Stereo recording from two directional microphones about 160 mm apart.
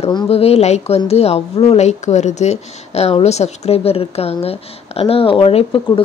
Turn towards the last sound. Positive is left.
turn(degrees=30)  # may be behind; listen again after turning